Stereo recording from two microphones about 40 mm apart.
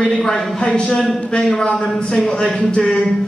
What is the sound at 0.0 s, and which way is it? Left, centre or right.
Speech, centre.